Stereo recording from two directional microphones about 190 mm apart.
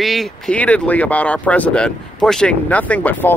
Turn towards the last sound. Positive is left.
turn(degrees=10)  # may be behind; listen again after turning